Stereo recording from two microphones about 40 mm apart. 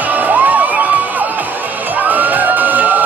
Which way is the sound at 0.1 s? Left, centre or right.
Right.